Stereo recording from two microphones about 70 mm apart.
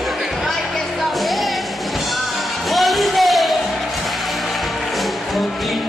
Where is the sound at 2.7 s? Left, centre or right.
Centre.